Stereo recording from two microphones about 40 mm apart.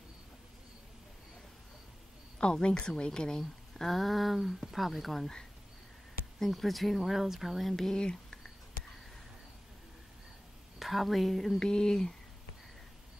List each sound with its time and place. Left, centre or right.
2.4 s speech: left; by 5.3 s centre
6.4 s speech: centre
8.0 s speech: centre
10.8 s speech: centre
11.6 s speech: centre